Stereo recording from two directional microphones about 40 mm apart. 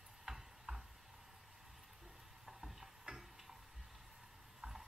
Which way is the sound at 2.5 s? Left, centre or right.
Centre.